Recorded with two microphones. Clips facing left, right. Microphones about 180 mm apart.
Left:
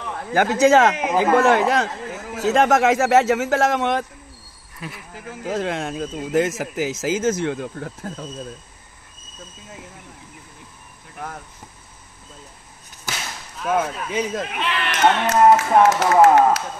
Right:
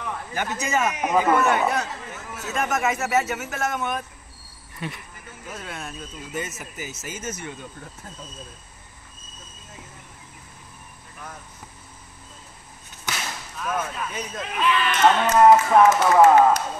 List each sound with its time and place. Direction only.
0.3 s a man's voice: 90° left
4.7 s speech: centre (ahead or behind)
5.1 s a man's voice: 85° left; by 8.3 s 65° left (ahead or behind)
13.7 s speech: 90° left